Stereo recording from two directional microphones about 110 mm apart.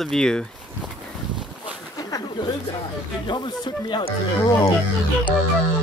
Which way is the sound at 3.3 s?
45° left (ahead or behind).